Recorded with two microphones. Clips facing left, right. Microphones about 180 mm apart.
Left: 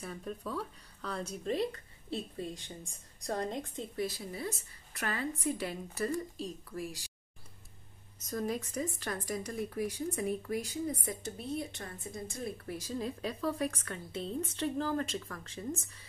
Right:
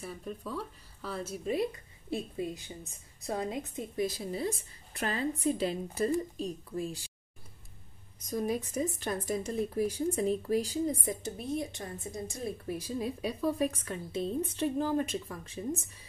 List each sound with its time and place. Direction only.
0.0 s a woman's voice: 5° right (ahead or behind); by 7.0 s 20° right (ahead or behind)
8.3 s speech: 15° right (ahead or behind)
11.1 s a woman's voice: 20° right (ahead or behind)